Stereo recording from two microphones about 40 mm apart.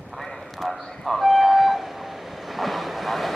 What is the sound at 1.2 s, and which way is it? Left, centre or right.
Train, centre.